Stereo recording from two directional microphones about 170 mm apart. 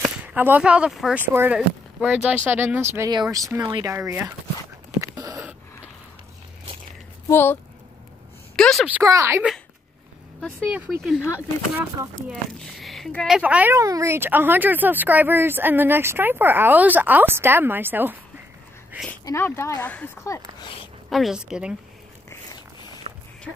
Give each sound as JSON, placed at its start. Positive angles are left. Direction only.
{"t": 0.0, "sound": "speech", "side_deg": -10}
{"t": 5.0, "sound": "a sound", "side_deg": -20}
{"t": 7.2, "sound": "speech", "side_deg": 10}
{"t": 8.5, "sound": "a woman's voice", "side_deg": 5}
{"t": 9.0, "sound": "speech", "side_deg": -20}
{"t": 11.0, "sound": "a woman's voice", "side_deg": 0}
{"t": 12.3, "sound": "speech", "side_deg": 5}
{"t": 13.4, "sound": "speech", "side_deg": -10}
{"t": 19.2, "sound": "speech", "side_deg": 15}
{"t": 21.1, "sound": "a woman's voice", "side_deg": 0}
{"t": 23.1, "sound": "a sound", "side_deg": -40}